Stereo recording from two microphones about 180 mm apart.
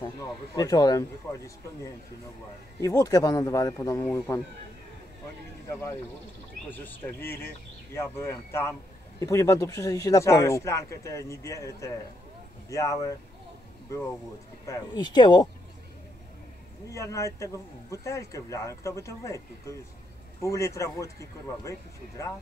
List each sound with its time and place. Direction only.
0.0 s speech: 20° left (ahead or behind)
5.7 s speech: 15° left (ahead or behind)
16.9 s speech: 15° left (ahead or behind)